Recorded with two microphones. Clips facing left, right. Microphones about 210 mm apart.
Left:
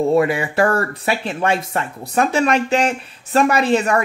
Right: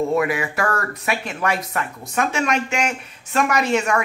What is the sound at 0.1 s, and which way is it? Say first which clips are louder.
A woman's voice: left 4 dB; 30° left (ahead or behind).